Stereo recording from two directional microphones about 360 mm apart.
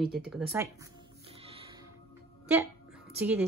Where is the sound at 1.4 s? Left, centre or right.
Centre.